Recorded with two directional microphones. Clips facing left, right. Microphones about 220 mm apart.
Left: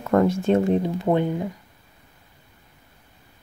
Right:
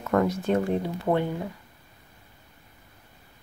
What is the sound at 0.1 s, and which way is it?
Speech, 25° left (ahead or behind).